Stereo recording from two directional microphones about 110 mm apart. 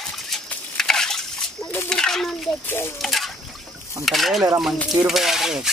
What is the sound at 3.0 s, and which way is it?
Speech, centre (ahead or behind).